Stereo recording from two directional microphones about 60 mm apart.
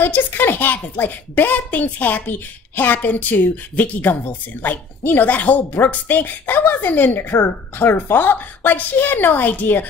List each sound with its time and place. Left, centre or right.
0.0 s a woman's voice: left